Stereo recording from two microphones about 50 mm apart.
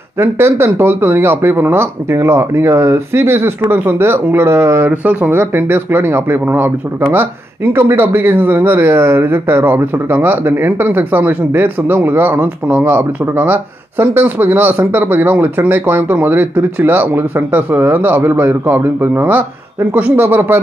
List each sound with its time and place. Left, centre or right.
0.2 s speech: right
4.8 s speech: right
5.3 s a man's voice: right
11.0 s speech: right
17.5 s speech: right
17.7 s a man's voice: right